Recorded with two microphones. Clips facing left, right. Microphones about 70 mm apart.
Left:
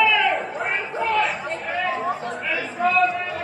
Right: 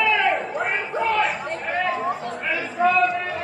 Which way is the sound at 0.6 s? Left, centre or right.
Centre.